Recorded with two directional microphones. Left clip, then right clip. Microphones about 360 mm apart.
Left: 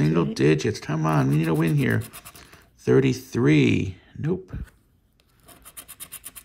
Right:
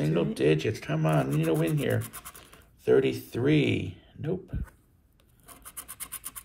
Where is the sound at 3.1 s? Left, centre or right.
Centre.